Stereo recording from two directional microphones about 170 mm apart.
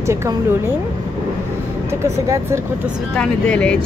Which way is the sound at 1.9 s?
15° right (ahead or behind).